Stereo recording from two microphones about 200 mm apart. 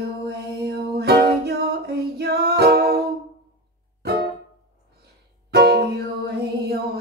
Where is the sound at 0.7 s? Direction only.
55° right (ahead or behind).